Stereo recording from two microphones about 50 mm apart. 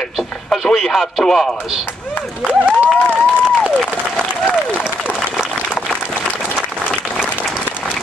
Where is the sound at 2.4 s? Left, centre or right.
Right.